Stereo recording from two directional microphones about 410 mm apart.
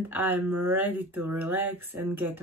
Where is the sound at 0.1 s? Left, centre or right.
Centre.